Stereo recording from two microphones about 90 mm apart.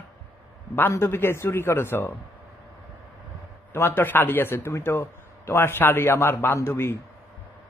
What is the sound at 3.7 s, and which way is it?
A man's voice, 25° left (ahead or behind).